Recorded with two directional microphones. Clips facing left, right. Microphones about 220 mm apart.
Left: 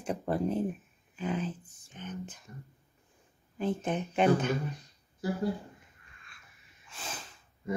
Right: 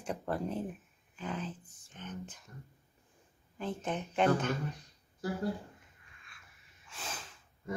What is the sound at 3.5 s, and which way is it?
Speech, 15° left (ahead or behind).